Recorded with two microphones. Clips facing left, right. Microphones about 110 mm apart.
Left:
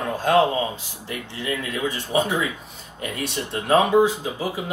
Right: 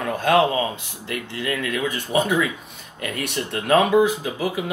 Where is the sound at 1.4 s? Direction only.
25° left (ahead or behind).